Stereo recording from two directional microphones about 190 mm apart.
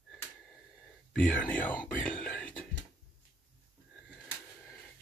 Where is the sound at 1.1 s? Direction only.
5° left (ahead or behind).